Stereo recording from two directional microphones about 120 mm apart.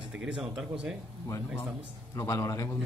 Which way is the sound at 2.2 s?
25° left (ahead or behind).